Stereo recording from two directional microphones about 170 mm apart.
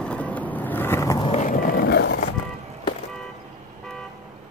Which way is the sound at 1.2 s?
35° left (ahead or behind).